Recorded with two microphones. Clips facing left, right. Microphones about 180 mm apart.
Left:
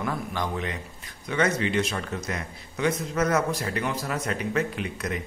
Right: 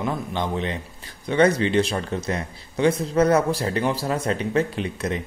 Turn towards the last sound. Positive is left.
turn(degrees=-30)  # may be behind; listen again after turning